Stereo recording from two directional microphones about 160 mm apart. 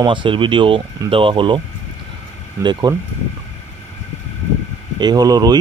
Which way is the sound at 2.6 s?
25° right (ahead or behind).